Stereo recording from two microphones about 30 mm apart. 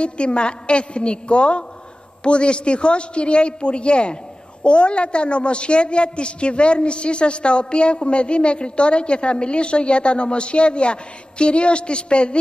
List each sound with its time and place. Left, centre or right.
0.0 s a man's voice: left